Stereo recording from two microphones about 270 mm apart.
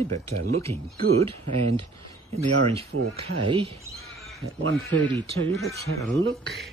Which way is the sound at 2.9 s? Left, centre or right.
Right.